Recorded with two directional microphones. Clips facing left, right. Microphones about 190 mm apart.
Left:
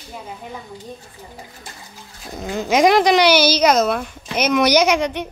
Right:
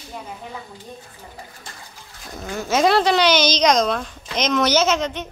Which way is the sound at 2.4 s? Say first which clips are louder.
Left 3 dB; 15° left (ahead or behind).